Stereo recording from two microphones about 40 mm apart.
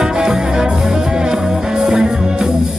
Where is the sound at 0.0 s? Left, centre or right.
Centre.